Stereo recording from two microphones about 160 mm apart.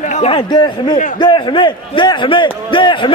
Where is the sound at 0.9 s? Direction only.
55° left (ahead or behind).